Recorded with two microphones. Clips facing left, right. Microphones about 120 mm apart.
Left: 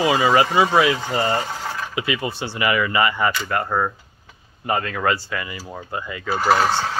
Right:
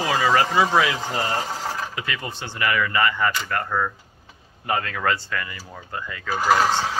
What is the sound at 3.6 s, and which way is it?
Speech, 30° left (ahead or behind).